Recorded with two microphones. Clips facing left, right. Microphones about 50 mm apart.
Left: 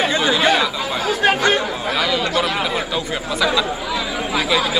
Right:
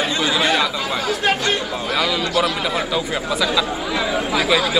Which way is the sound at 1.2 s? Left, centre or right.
Left.